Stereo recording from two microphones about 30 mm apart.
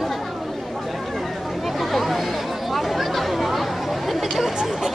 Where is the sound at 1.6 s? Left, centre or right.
Centre.